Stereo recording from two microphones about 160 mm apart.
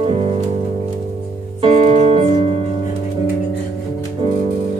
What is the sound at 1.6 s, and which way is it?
Music, 35° right (ahead or behind).